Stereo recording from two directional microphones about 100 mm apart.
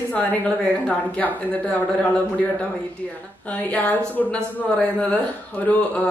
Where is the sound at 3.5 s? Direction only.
15° left (ahead or behind).